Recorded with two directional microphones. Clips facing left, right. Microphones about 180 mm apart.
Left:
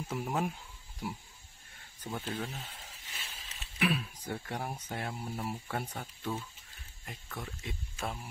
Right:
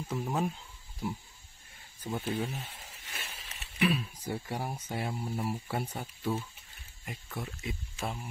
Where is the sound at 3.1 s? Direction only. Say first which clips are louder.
Right 6 dB; 70° right (ahead or behind).